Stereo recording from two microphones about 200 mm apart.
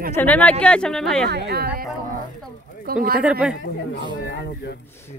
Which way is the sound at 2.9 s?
50° right (ahead or behind).